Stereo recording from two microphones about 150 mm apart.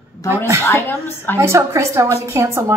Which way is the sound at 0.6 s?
15° left (ahead or behind).